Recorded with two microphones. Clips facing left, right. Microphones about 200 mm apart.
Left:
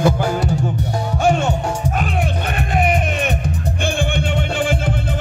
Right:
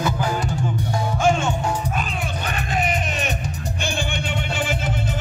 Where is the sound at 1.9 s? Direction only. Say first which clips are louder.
Left 5 dB; 60° left (ahead or behind).